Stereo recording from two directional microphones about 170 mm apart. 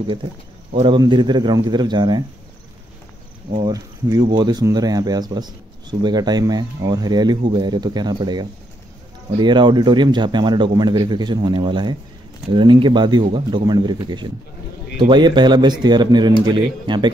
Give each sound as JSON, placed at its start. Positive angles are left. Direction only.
{"t": 0.7, "sound": "speech", "side_deg": -25}
{"t": 3.6, "sound": "speech", "side_deg": -20}